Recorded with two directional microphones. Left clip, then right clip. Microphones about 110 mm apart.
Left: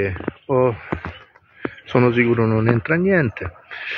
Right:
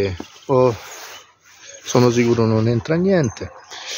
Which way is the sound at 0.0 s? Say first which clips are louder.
Even; 50° right (ahead or behind).